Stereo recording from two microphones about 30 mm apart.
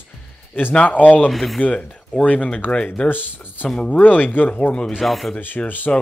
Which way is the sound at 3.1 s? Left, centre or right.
Left.